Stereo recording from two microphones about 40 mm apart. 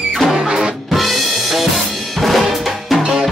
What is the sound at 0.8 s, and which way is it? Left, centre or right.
Drum kit, centre.